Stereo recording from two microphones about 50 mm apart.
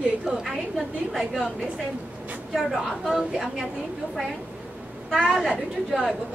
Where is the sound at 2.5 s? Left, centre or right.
Centre.